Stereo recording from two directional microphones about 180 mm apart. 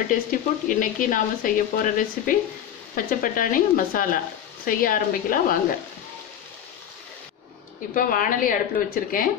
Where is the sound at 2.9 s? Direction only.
50° left (ahead or behind).